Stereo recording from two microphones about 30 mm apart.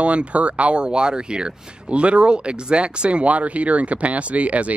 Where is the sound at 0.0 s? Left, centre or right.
Right.